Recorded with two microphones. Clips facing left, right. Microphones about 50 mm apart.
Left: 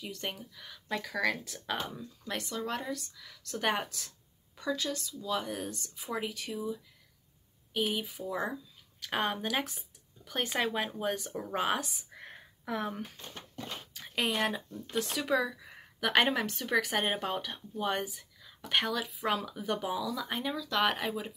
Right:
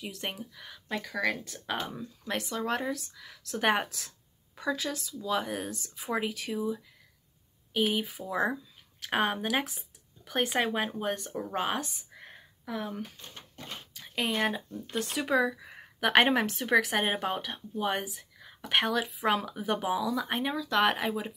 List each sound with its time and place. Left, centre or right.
0.0 s speech: centre
1.0 s speech: centre
2.5 s speech: right
5.4 s speech: right
9.2 s speech: centre
10.2 s speech: right
10.5 s speech: centre
11.3 s speech: centre
12.2 s a sound: centre
14.2 s speech: centre
15.1 s speech: right
20.6 s speech: right
20.9 s speech: centre